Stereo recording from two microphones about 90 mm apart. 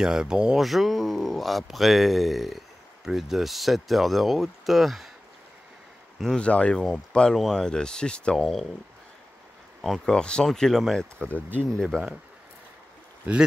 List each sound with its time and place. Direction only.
0.0 s speech: 10° right (ahead or behind)
6.2 s speech: 10° left (ahead or behind)
9.8 s speech: centre (ahead or behind)
13.3 s speech: 15° right (ahead or behind)